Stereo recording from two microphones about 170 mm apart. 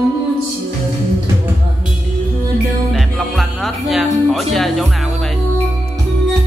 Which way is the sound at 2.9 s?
Centre (ahead or behind).